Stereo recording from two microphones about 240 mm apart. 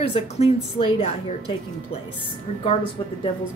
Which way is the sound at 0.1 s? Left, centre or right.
Left.